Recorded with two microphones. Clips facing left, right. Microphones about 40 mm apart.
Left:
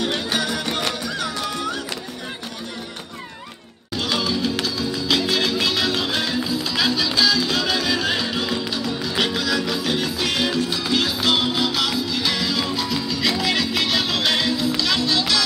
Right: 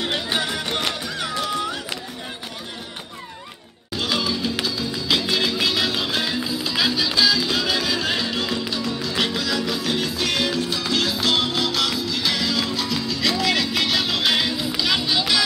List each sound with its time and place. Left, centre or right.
0.0 s music: right
3.9 s music: centre